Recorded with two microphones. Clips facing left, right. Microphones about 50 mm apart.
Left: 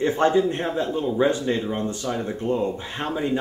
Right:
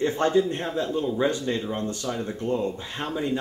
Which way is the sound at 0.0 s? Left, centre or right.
Centre.